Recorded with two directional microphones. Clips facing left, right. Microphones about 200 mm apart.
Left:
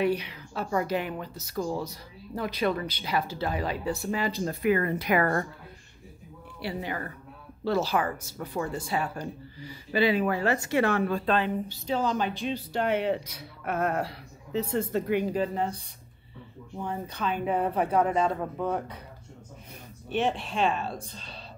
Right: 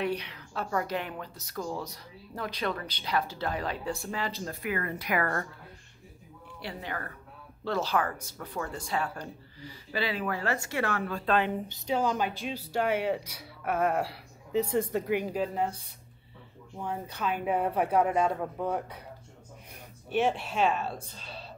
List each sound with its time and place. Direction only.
0.0 s speech: 5° left (ahead or behind)
4.6 s a woman's voice: 25° left (ahead or behind)
6.6 s speech: 10° left (ahead or behind)
11.3 s speech: 15° right (ahead or behind)
16.8 s speech: 5° right (ahead or behind)
20.1 s speech: 10° right (ahead or behind)